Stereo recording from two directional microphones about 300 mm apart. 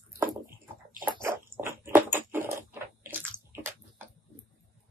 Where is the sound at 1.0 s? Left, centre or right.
Centre.